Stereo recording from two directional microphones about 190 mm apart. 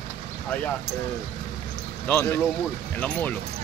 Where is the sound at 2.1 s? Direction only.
10° left (ahead or behind).